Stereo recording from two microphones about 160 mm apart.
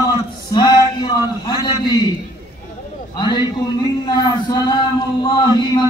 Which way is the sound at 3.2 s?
25° left (ahead or behind).